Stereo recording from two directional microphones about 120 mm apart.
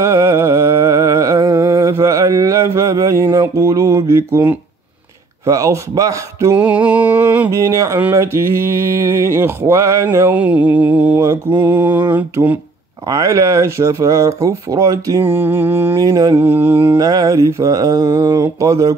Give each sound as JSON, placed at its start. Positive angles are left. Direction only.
{"t": 0.0, "sound": "a sound", "side_deg": -25}
{"t": 5.4, "sound": "speech", "side_deg": -25}
{"t": 6.5, "sound": "music", "side_deg": -10}
{"t": 7.5, "sound": "speech", "side_deg": -25}
{"t": 10.3, "sound": "music", "side_deg": -10}
{"t": 13.1, "sound": "speech", "side_deg": -25}
{"t": 16.0, "sound": "mantra", "side_deg": -30}
{"t": 16.3, "sound": "music", "side_deg": -20}
{"t": 17.0, "sound": "speech", "side_deg": -30}